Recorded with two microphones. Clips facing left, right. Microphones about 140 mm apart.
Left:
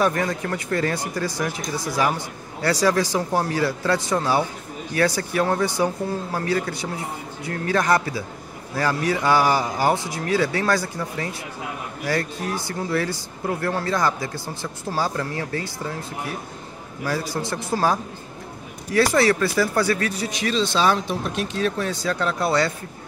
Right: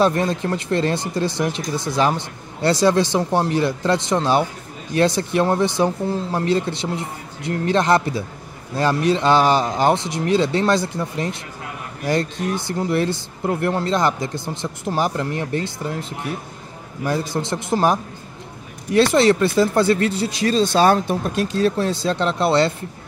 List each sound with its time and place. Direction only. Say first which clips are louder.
0.0 s speech: right 4 dB; 25° right (ahead or behind)
19.1 s speech: right 4 dB; 25° right (ahead or behind)
20.6 s speech: right 5 dB; 50° right (ahead or behind)
21.6 s speech: right 3 dB; 30° right (ahead or behind)